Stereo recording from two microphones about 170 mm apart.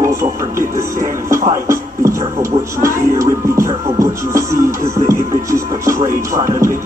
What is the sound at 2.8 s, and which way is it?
Music, 20° right (ahead or behind).